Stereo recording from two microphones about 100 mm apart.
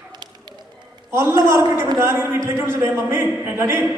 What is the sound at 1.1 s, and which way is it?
Speech, 25° right (ahead or behind).